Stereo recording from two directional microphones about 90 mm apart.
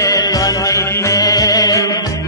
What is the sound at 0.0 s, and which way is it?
Music, 40° left (ahead or behind).